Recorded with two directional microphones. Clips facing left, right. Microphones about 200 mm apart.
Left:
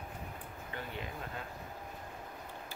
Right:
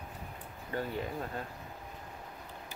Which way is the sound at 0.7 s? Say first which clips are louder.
Right 9 dB; 40° right (ahead or behind).